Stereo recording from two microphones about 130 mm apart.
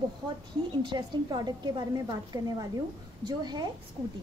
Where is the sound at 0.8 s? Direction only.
35° right (ahead or behind).